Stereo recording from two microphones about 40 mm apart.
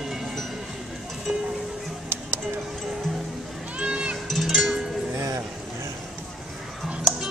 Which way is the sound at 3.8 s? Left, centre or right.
Right.